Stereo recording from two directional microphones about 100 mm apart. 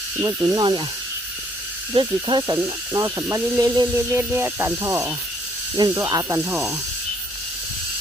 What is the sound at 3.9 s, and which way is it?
Snake, 25° right (ahead or behind).